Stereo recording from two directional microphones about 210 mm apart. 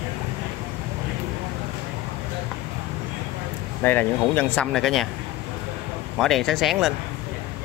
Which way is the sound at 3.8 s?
10° left (ahead or behind).